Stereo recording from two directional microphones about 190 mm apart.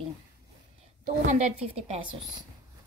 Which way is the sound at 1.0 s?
40° right (ahead or behind).